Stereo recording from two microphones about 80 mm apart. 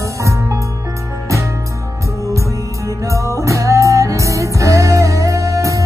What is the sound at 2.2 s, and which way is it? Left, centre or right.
Music, right.